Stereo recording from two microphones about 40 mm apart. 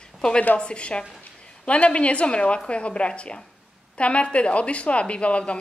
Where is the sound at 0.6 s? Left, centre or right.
Left.